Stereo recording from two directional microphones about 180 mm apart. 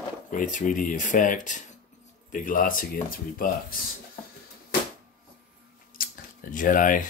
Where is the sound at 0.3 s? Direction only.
45° left (ahead or behind).